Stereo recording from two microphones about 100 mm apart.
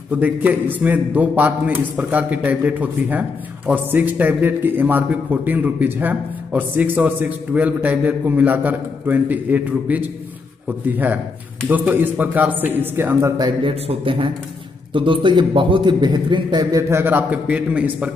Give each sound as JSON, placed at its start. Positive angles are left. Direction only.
{"t": 0.1, "sound": "a man's voice", "side_deg": -15}
{"t": 13.7, "sound": "a man's voice", "side_deg": -60}
{"t": 16.9, "sound": "a man's voice", "side_deg": -20}